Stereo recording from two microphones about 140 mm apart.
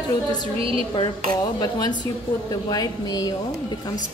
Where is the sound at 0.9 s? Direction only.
35° left (ahead or behind).